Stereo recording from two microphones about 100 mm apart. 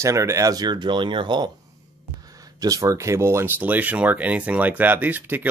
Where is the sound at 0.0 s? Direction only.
30° right (ahead or behind); by 1.5 s 50° right (ahead or behind).